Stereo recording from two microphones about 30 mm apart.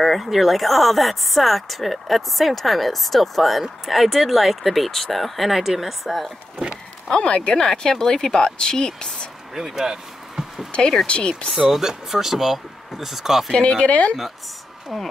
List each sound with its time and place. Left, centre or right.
0.0 s a sound: centre
0.3 s speech: centre
7.1 s speech: left
9.8 s a sound: centre
11.1 s speech: left
11.5 s speech: centre
13.5 s speech: left
13.8 s a woman's voice: left